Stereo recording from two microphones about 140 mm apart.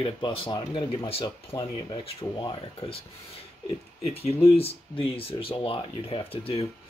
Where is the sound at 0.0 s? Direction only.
40° left (ahead or behind).